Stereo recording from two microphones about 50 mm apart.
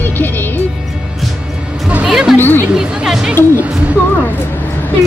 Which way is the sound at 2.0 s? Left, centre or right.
Centre.